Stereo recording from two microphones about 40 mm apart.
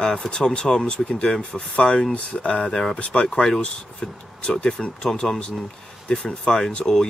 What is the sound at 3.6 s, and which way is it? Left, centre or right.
Speech, left.